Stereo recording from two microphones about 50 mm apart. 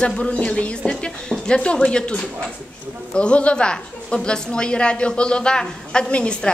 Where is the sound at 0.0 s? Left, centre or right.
Left.